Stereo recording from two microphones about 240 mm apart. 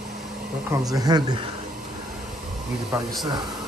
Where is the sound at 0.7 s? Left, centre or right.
Centre.